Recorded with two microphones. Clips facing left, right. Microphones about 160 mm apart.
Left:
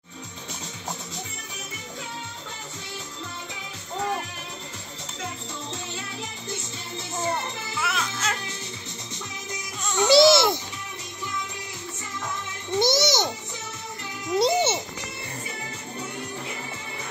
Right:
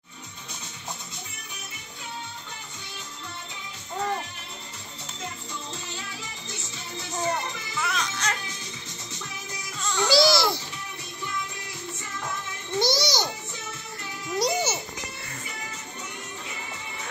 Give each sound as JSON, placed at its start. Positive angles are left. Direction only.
{"t": 7.8, "sound": "music", "side_deg": 5}
{"t": 9.8, "sound": "music", "side_deg": 20}
{"t": 12.7, "sound": "music", "side_deg": 20}
{"t": 14.4, "sound": "music", "side_deg": 25}